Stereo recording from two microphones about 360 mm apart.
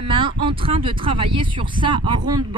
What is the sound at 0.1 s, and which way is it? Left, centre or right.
Speech, centre.